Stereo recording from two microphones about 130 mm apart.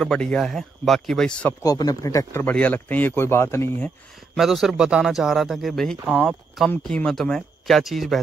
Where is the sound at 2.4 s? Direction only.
10° left (ahead or behind).